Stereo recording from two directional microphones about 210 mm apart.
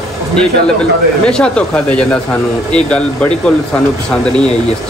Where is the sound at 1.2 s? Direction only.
5° left (ahead or behind).